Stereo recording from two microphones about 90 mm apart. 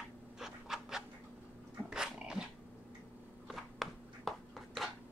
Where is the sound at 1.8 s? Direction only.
10° right (ahead or behind).